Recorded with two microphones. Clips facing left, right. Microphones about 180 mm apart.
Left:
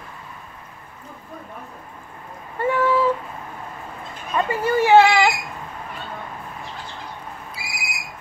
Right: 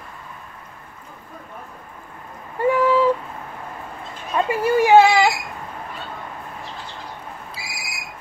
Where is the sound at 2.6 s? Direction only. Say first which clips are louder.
Right 2 dB; 15° right (ahead or behind).